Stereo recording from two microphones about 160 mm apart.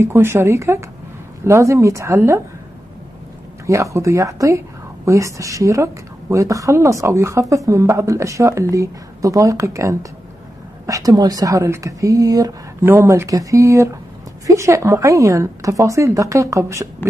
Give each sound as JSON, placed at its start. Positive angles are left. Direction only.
{"t": 0.0, "sound": "a woman's voice", "side_deg": -15}
{"t": 3.6, "sound": "a woman's voice", "side_deg": -20}